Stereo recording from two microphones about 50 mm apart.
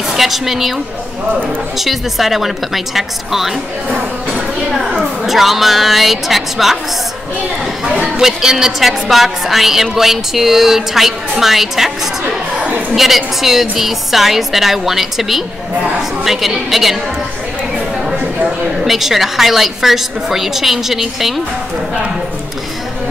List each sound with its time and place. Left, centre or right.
0.1 s a woman's voice: centre
1.8 s a woman's voice: centre
7.8 s chatter: centre
8.2 s a woman's voice: centre
18.9 s a woman's voice: centre